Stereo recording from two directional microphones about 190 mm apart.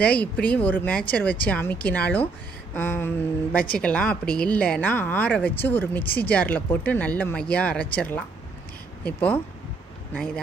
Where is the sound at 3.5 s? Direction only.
50° left (ahead or behind).